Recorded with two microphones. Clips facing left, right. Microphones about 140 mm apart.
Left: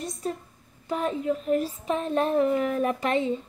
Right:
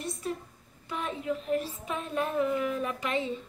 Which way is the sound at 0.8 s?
40° left (ahead or behind).